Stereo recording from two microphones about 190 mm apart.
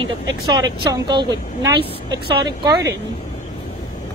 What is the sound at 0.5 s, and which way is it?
A woman's voice, 20° right (ahead or behind).